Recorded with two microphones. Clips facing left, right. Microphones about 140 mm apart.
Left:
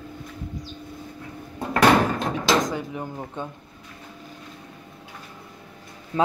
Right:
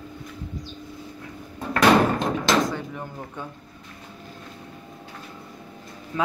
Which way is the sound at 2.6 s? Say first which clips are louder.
Right 1 dB; 15° left (ahead or behind).